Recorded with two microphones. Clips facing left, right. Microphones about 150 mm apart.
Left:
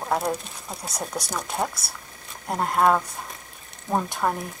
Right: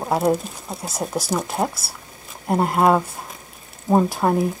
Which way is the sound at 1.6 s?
30° right (ahead or behind).